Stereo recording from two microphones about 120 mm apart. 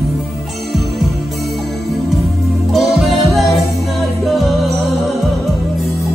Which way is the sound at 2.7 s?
Centre (ahead or behind).